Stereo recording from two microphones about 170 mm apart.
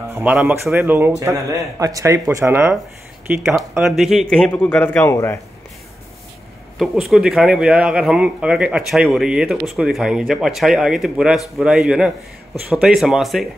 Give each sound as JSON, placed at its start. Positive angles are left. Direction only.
{"t": 0.1, "sound": "speech", "side_deg": -10}
{"t": 3.3, "sound": "a man's voice", "side_deg": -5}
{"t": 6.8, "sound": "a man's voice", "side_deg": 0}